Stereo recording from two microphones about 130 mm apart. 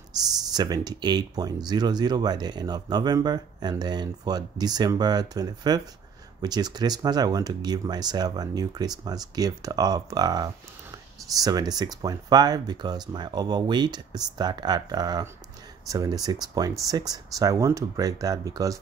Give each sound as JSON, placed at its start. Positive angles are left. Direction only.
{"t": 0.2, "sound": "speech", "side_deg": -30}